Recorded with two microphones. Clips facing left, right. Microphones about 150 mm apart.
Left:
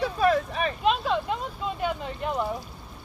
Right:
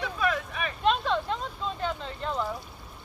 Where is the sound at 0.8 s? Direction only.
5° left (ahead or behind).